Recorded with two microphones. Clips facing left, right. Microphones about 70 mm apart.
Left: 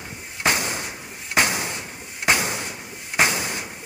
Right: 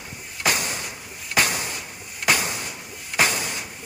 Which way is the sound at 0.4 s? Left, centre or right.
Left.